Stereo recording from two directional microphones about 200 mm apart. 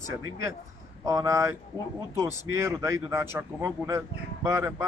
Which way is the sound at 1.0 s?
15° right (ahead or behind).